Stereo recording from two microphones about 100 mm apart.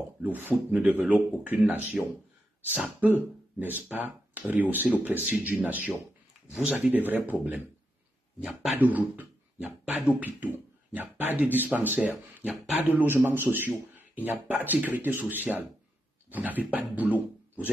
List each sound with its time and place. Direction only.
0.2 s speech: 15° right (ahead or behind)
8.7 s speech: 15° right (ahead or behind)